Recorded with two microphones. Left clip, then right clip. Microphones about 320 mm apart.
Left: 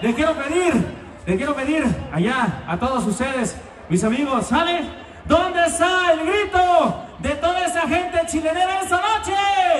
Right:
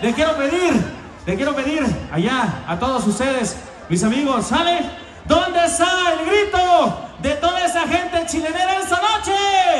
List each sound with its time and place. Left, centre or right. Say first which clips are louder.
0.0 s a man's voice: right 3 dB; right